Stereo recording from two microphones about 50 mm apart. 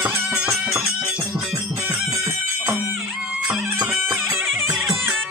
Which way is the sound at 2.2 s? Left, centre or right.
Right.